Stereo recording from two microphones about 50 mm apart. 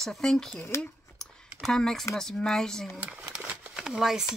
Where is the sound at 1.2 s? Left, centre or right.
Centre.